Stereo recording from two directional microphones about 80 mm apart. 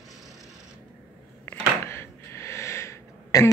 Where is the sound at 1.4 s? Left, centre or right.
Left.